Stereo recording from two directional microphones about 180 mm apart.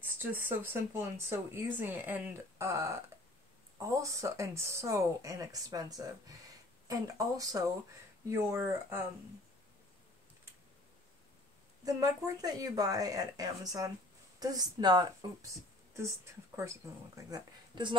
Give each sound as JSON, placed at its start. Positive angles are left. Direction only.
{"t": 0.2, "sound": "speech", "side_deg": -10}
{"t": 11.8, "sound": "speech", "side_deg": -20}
{"t": 17.3, "sound": "speech", "side_deg": -25}